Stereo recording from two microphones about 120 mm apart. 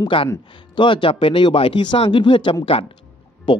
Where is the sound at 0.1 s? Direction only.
45° left (ahead or behind).